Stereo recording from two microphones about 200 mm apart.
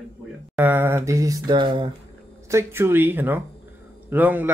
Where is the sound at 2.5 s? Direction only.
10° right (ahead or behind).